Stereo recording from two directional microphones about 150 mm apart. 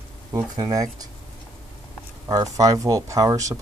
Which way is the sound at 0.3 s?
25° right (ahead or behind).